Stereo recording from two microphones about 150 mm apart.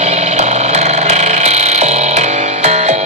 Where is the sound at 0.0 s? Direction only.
50° right (ahead or behind).